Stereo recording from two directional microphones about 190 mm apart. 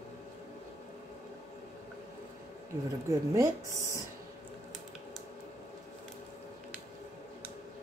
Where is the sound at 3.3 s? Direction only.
15° right (ahead or behind).